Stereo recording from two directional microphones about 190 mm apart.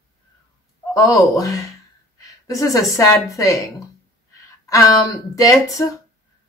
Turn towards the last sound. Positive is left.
turn(degrees=15)  # may be behind; listen again after turning